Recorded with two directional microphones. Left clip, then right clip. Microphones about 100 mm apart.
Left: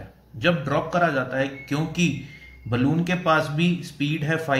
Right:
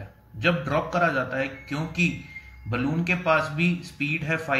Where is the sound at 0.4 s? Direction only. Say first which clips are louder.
Left 1 dB; 20° left (ahead or behind).